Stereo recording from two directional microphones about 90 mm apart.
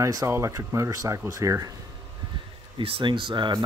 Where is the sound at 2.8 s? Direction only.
65° right (ahead or behind).